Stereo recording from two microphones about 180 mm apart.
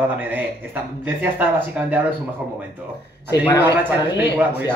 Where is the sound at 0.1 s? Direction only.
10° right (ahead or behind).